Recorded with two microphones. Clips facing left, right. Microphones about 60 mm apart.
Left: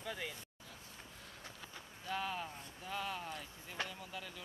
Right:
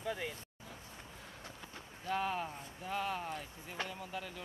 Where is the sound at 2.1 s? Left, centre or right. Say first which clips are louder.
Right 4 dB; right.